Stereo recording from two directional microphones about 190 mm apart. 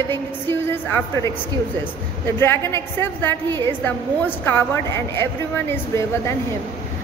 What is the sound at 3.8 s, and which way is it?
A woman's voice, 10° left (ahead or behind).